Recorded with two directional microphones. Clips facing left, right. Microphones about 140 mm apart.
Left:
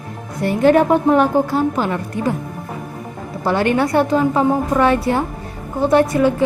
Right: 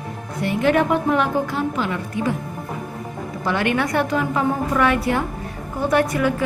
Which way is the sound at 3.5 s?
35° left (ahead or behind).